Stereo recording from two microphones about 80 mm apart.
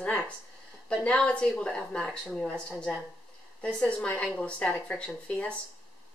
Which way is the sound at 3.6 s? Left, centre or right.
Centre.